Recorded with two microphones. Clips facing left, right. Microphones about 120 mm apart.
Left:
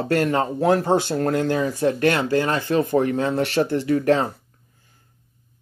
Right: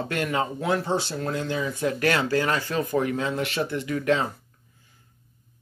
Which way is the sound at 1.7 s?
30° left (ahead or behind).